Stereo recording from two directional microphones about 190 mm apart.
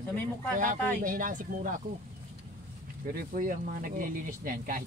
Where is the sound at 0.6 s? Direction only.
45° right (ahead or behind).